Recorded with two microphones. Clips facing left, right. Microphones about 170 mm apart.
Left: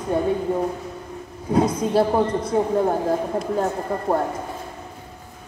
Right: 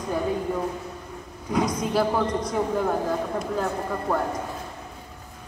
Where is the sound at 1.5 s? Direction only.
25° left (ahead or behind).